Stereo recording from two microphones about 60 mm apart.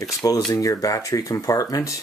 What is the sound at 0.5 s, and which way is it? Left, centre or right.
Speech, left.